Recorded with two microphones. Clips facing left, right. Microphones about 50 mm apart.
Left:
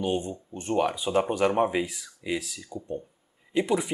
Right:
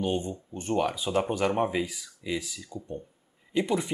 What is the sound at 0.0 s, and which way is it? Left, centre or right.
Speech, centre.